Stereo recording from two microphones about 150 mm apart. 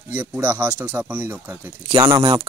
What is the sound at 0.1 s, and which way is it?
Speech, 10° right (ahead or behind).